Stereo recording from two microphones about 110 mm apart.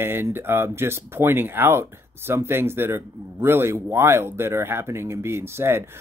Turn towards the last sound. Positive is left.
turn(degrees=-25)  # may be behind; listen again after turning